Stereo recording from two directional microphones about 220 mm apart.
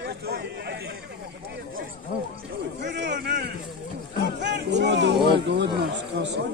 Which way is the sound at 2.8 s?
50° right (ahead or behind).